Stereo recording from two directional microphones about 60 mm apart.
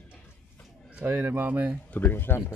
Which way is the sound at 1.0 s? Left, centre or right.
Right.